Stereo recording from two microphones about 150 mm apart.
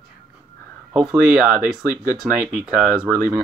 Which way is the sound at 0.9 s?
5° right (ahead or behind).